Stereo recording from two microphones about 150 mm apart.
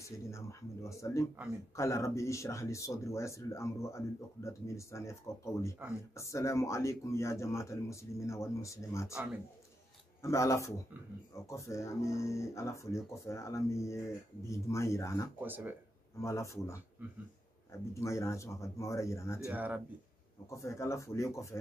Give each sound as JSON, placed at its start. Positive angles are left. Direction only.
{"t": 0.0, "sound": "speech", "side_deg": 20}
{"t": 9.1, "sound": "speech", "side_deg": -10}
{"t": 10.2, "sound": "speech", "side_deg": 20}
{"t": 15.4, "sound": "speech", "side_deg": -10}
{"t": 16.2, "sound": "speech", "side_deg": 20}
{"t": 17.9, "sound": "speech", "side_deg": 20}
{"t": 19.4, "sound": "speech", "side_deg": -10}
{"t": 20.4, "sound": "speech", "side_deg": 20}